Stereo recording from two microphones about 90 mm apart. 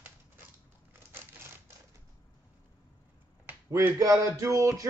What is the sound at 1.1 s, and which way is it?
Crumpling, 25° right (ahead or behind).